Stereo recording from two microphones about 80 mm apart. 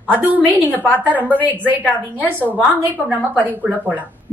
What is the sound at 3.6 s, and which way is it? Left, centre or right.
Speech, right.